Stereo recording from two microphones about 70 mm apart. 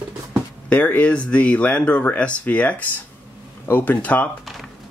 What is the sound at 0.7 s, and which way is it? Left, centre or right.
Speech, centre.